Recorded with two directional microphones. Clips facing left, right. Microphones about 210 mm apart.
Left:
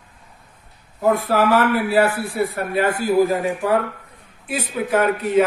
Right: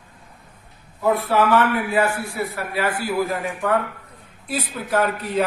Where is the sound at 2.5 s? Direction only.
50° left (ahead or behind).